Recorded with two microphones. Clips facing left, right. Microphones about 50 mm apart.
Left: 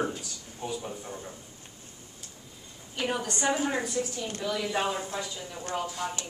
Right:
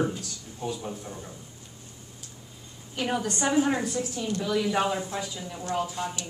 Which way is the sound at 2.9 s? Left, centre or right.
Centre.